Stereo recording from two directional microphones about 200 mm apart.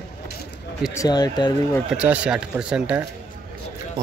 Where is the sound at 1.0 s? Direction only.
20° left (ahead or behind).